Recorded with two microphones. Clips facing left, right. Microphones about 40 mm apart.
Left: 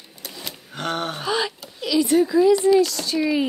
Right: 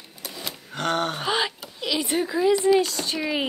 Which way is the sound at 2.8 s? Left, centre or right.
Right.